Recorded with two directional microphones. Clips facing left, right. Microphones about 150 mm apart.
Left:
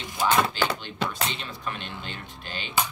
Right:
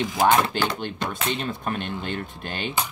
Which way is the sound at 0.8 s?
50° right (ahead or behind).